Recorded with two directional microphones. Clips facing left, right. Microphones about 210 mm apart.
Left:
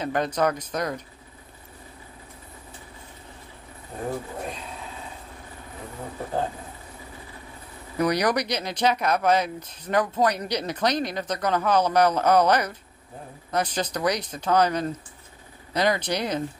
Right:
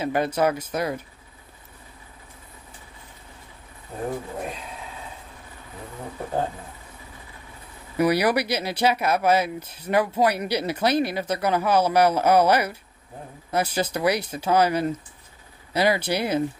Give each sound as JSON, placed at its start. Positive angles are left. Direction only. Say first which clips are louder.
{"t": 0.0, "sound": "speech", "louder": "right 2 dB", "side_deg": -5}
{"t": 8.0, "sound": "speech", "louder": "right 2 dB", "side_deg": -5}